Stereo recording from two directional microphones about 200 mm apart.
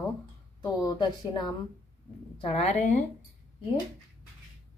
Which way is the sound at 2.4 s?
30° left (ahead or behind).